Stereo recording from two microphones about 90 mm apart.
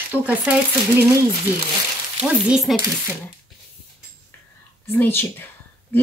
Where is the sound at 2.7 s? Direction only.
Centre (ahead or behind).